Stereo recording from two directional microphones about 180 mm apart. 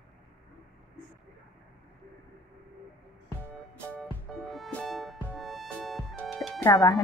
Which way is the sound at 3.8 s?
Centre (ahead or behind).